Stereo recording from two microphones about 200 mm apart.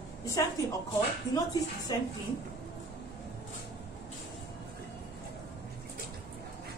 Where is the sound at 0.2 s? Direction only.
15° left (ahead or behind).